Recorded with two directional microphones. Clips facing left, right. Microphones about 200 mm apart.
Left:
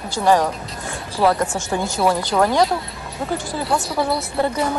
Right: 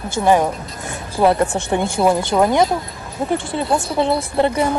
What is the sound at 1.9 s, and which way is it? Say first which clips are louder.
A woman's voice: right 2 dB; 20° right (ahead or behind).